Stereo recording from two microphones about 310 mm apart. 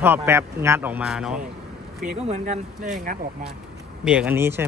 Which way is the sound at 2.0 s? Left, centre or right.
Right.